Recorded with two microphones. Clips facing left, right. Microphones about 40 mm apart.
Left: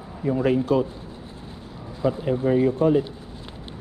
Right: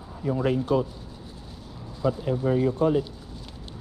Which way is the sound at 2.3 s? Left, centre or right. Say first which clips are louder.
Left 4 dB; left.